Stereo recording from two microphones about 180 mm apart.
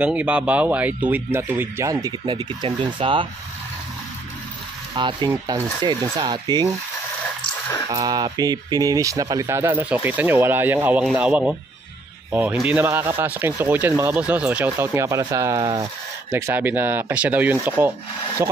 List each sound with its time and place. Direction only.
0.0 s speech: 10° right (ahead or behind); by 3.3 s 30° right (ahead or behind)
4.9 s speech: 25° right (ahead or behind)
7.9 s speech: 20° right (ahead or behind)